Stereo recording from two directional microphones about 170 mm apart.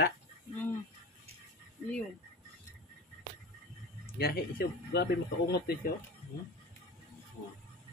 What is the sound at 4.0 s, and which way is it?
Speech, 65° left (ahead or behind).